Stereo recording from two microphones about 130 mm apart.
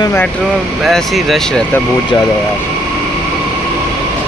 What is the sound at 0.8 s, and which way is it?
Speech, centre (ahead or behind).